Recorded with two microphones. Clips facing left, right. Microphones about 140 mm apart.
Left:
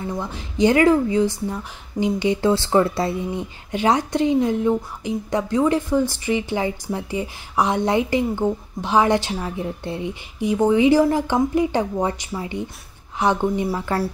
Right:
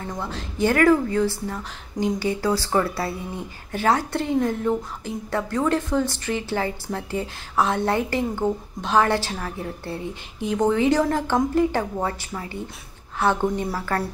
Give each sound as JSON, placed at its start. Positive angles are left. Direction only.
{"t": 0.0, "sound": "speech", "side_deg": 15}